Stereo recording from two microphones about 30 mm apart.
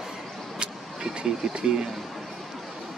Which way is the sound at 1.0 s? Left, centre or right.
Right.